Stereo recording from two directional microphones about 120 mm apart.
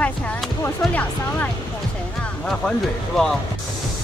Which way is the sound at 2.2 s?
5° left (ahead or behind).